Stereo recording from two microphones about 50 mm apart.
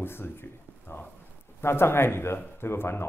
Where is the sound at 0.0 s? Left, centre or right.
Left.